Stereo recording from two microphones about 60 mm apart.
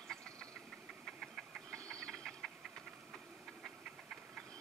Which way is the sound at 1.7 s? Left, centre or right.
Centre.